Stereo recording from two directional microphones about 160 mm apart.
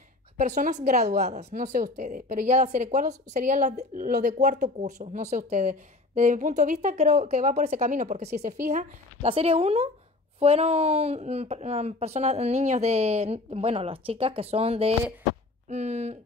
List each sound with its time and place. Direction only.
0.4 s speech: 50° right (ahead or behind)
1.0 s a woman's voice: 70° right (ahead or behind)
1.3 s speech: 45° right (ahead or behind)
8.3 s a woman's voice: 80° right
8.6 s speech: 50° right (ahead or behind)
9.3 s speech: 40° right (ahead or behind)